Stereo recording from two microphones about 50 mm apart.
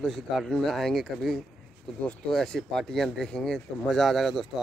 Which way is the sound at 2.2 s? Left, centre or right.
Centre.